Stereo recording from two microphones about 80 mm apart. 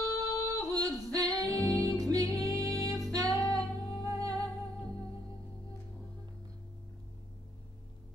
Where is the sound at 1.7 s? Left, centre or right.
Right.